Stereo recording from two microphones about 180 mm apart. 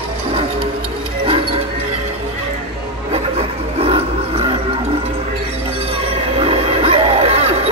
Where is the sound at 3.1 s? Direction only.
35° right (ahead or behind).